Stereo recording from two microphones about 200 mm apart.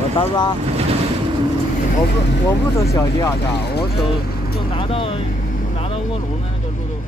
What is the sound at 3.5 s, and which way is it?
Speech, 55° left (ahead or behind).